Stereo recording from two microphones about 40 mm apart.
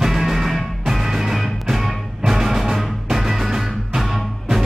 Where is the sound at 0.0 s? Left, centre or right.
Centre.